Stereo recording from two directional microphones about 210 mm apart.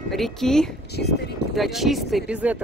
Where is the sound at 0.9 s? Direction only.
50° left (ahead or behind).